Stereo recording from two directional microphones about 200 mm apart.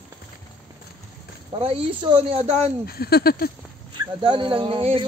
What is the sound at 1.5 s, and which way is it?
Speech, 30° right (ahead or behind).